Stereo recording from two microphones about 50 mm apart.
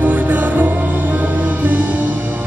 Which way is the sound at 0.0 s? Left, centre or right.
Right.